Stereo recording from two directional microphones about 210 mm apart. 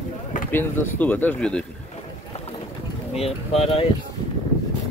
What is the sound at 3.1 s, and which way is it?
Speech, 30° left (ahead or behind).